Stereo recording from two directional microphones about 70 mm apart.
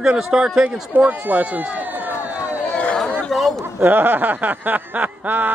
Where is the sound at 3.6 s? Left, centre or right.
Right.